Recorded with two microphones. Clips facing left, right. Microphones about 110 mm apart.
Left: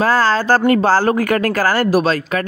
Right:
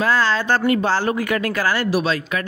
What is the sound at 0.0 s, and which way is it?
Speech, 40° left (ahead or behind).